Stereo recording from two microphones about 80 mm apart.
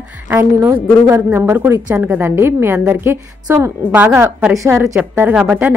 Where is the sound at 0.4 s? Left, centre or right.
Right.